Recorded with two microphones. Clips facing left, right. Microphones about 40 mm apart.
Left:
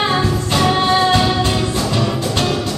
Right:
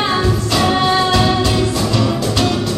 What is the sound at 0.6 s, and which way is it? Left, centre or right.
Music, centre.